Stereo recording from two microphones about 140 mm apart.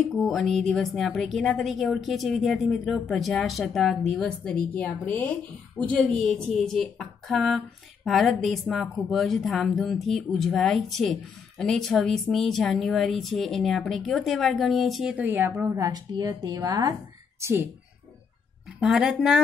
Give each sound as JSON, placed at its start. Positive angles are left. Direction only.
{"t": 0.1, "sound": "a woman's voice", "side_deg": 0}
{"t": 15.1, "sound": "a woman's voice", "side_deg": -15}
{"t": 18.8, "sound": "a woman's voice", "side_deg": -5}